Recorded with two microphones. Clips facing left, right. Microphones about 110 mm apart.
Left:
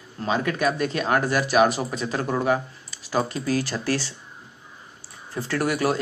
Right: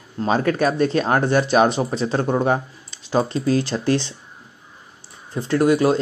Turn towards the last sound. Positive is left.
turn(degrees=-20)  # may be behind; listen again after turning